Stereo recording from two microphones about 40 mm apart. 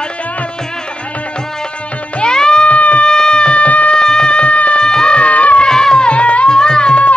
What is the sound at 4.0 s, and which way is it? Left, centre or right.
Music, centre.